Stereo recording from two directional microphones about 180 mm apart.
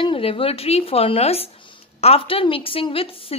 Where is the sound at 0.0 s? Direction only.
30° left (ahead or behind).